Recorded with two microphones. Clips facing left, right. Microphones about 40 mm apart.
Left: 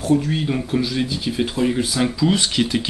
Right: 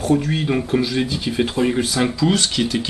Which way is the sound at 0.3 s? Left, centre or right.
Centre.